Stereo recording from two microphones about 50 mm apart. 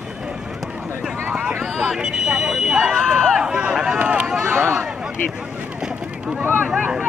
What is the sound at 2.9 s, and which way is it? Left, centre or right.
Speech, centre.